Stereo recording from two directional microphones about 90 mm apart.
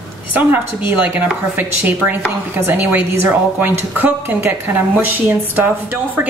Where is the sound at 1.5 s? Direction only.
20° right (ahead or behind).